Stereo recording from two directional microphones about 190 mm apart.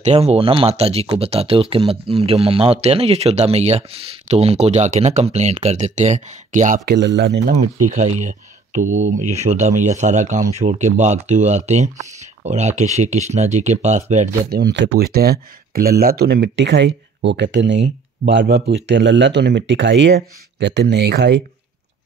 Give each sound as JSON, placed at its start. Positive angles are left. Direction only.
{"t": 0.0, "sound": "speech", "side_deg": -35}
{"t": 6.9, "sound": "speech", "side_deg": -65}
{"t": 7.9, "sound": "speech", "side_deg": -40}
{"t": 14.5, "sound": "speech", "side_deg": -60}
{"t": 18.4, "sound": "speech", "side_deg": -60}